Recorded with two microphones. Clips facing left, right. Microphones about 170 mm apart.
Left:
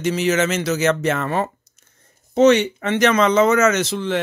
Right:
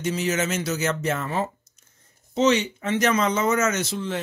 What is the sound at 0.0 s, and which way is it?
Speech, 90° left.